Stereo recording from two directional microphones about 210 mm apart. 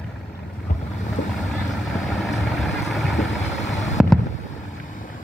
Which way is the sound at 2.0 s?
Centre (ahead or behind).